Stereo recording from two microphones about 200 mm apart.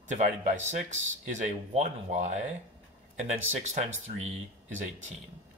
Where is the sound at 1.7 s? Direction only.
35° right (ahead or behind).